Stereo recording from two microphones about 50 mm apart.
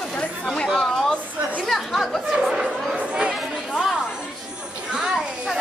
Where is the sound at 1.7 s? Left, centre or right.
Centre.